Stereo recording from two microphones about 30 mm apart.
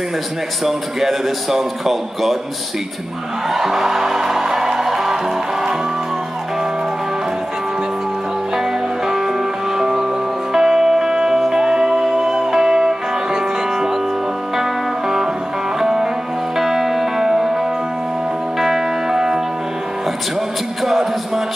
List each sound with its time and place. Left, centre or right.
0.7 s a man's voice: centre
3.4 s speech: centre
4.8 s music: centre
8.5 s music: centre
18.6 s music: centre
20.8 s music: centre